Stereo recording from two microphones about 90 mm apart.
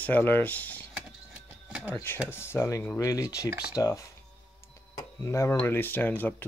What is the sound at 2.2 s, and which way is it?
Speech, 25° left (ahead or behind).